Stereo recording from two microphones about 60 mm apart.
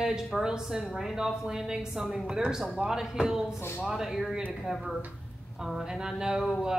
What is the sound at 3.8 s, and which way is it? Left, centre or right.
A woman's voice, centre.